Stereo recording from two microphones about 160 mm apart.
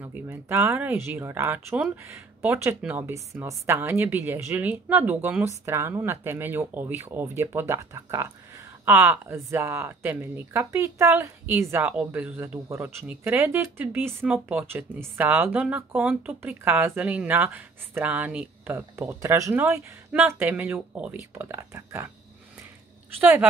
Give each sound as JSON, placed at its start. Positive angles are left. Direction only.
{"t": 0.0, "sound": "speech", "side_deg": -15}